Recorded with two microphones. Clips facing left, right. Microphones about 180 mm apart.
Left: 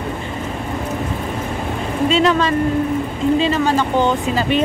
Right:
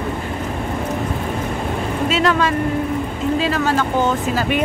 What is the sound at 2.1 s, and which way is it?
Speech, 5° right (ahead or behind).